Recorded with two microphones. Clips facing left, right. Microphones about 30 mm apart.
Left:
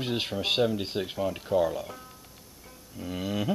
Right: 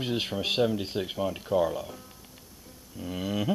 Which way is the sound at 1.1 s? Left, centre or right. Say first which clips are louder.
Left 1 dB; centre.